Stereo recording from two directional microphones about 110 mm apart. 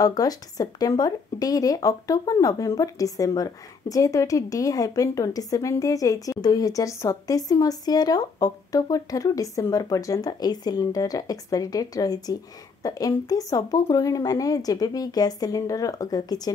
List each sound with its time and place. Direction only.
0.0 s speech: 35° left (ahead or behind)